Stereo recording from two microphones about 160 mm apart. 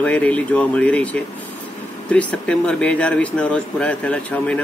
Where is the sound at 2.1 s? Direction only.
5° left (ahead or behind).